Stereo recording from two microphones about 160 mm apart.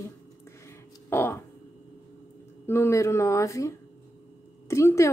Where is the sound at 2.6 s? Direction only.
15° left (ahead or behind).